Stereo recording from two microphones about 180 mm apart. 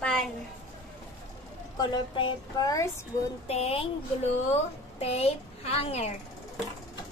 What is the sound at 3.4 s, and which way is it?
A woman's voice, 35° left (ahead or behind).